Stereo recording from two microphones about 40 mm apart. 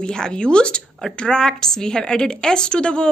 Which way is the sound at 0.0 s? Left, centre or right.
Centre.